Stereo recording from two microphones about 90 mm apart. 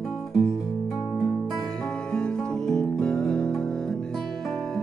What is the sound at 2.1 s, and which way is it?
Music, 10° left (ahead or behind).